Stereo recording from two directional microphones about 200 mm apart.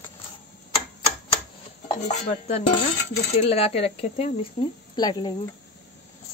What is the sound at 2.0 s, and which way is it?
Dishes, 35° left (ahead or behind).